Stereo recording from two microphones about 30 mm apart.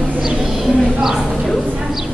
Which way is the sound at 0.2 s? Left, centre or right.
Centre.